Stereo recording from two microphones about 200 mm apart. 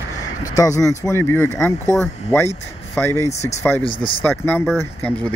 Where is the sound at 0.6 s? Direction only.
15° left (ahead or behind).